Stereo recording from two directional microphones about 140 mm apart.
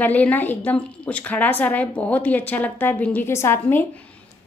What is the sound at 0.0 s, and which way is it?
Speech, 10° left (ahead or behind).